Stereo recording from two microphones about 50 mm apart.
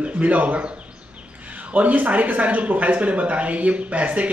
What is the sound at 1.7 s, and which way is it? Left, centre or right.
Speech, right.